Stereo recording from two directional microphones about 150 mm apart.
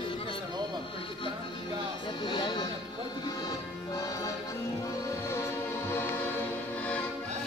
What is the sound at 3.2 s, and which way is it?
Music, 25° left (ahead or behind).